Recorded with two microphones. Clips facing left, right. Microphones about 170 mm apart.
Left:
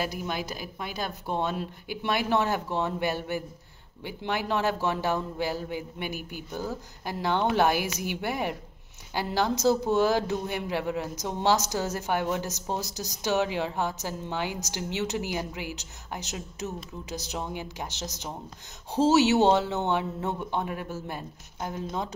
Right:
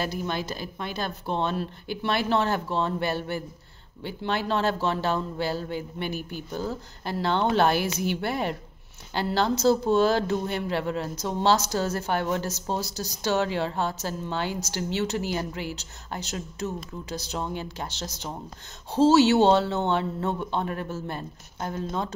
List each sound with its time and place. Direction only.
0.0 s speech: 10° left (ahead or behind)